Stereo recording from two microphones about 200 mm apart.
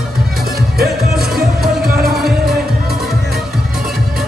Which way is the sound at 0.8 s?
50° right (ahead or behind).